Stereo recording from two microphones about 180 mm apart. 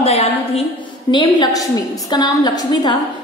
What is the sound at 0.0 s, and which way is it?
Speech, 35° left (ahead or behind).